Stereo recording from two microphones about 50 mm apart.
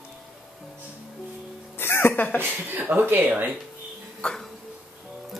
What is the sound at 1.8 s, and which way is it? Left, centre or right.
Music, left.